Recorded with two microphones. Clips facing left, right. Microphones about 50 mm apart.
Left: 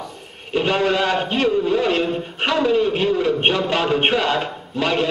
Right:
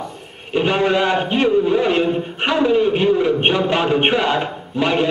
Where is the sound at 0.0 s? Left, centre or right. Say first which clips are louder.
Right 3 dB; centre.